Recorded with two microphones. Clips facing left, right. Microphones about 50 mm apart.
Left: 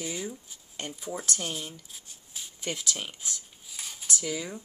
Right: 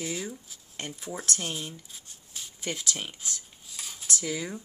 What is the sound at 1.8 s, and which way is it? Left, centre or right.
Rub, centre.